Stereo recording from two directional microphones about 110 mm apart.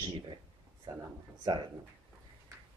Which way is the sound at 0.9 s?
40° right (ahead or behind).